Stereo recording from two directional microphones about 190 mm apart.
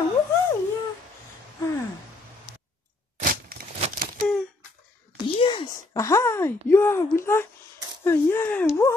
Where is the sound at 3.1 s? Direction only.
50° right (ahead or behind).